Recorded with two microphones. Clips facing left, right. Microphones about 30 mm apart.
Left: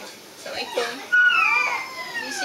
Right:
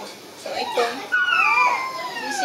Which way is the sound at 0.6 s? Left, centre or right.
Right.